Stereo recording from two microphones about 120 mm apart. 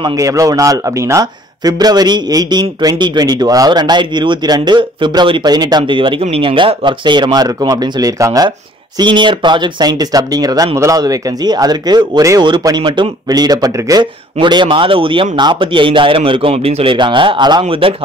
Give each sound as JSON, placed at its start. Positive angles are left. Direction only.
{"t": 0.2, "sound": "a man's voice", "side_deg": -30}
{"t": 16.9, "sound": "speech", "side_deg": -40}